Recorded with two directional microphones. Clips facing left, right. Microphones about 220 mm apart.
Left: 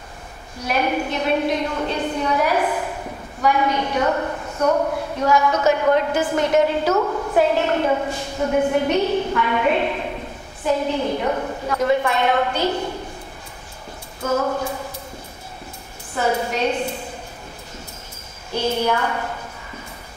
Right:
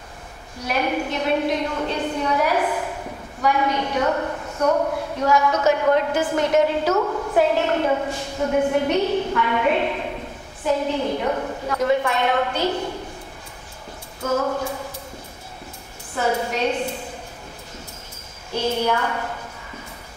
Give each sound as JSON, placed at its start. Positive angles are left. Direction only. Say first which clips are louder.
{"t": 0.7, "sound": "a woman's voice", "louder": "left 1 dB", "side_deg": 15}
{"t": 6.9, "sound": "a woman's voice", "louder": "left 1 dB", "side_deg": 30}
{"t": 7.3, "sound": "a woman's voice", "louder": "left 1 dB", "side_deg": 15}
{"t": 11.1, "sound": "a woman's voice", "louder": "left 1 dB", "side_deg": 25}
{"t": 14.2, "sound": "a woman's voice", "louder": "left 1 dB", "side_deg": 25}
{"t": 16.2, "sound": "a woman's voice", "louder": "left 1 dB", "side_deg": 20}
{"t": 18.6, "sound": "a woman's voice", "louder": "left 1 dB", "side_deg": 20}